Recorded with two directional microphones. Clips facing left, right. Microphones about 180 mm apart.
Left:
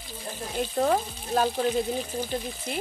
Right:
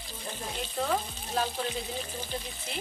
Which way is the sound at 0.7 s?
45° left (ahead or behind).